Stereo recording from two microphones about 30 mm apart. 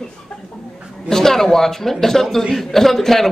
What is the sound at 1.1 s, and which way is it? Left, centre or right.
A man's voice, centre.